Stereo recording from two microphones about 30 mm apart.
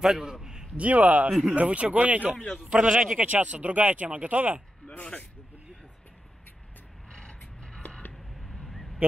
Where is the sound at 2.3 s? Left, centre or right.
Left.